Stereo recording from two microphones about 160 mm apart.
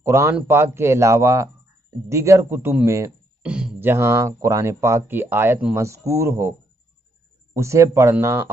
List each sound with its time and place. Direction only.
0.0 s speech: 15° right (ahead or behind)
3.4 s speech: 5° right (ahead or behind)
7.5 s speech: 20° right (ahead or behind)